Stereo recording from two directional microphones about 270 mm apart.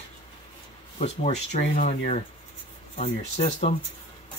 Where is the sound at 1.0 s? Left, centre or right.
Left.